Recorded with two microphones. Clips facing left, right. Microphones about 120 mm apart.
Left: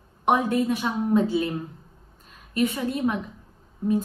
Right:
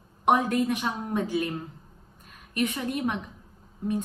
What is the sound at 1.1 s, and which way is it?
Speech, 25° left (ahead or behind).